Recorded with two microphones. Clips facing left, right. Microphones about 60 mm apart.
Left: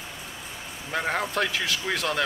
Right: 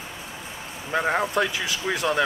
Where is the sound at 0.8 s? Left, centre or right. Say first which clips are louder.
Right 4 dB; centre.